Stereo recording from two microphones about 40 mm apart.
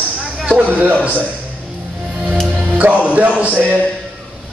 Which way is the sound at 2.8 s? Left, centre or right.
Right.